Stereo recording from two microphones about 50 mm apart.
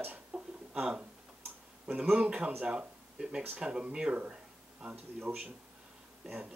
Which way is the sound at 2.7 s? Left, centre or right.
Centre.